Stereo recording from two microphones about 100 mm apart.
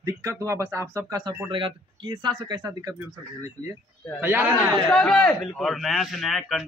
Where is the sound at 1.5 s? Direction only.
50° right (ahead or behind).